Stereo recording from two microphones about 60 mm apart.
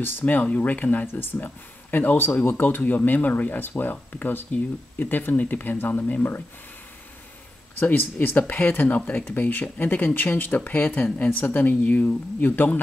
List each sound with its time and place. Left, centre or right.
0.0 s speech: left
7.8 s speech: left